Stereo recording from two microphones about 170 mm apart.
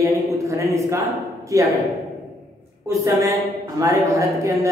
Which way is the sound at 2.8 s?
20° right (ahead or behind).